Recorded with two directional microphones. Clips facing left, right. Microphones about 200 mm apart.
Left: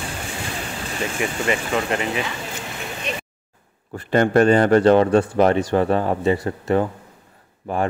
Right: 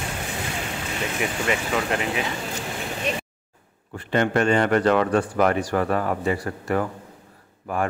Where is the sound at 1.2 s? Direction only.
Centre (ahead or behind).